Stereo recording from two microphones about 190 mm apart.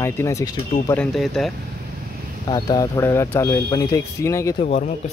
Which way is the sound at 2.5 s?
20° left (ahead or behind).